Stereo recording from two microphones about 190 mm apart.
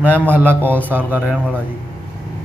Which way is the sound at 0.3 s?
10° right (ahead or behind).